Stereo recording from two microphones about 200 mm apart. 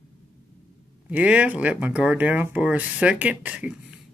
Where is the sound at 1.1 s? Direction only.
5° right (ahead or behind).